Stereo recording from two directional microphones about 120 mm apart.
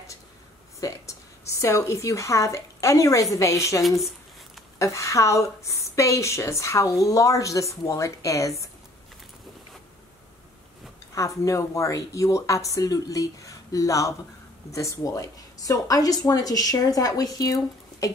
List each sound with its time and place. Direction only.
0.7 s a woman's voice: 25° left (ahead or behind)
11.1 s a woman's voice: 25° left (ahead or behind)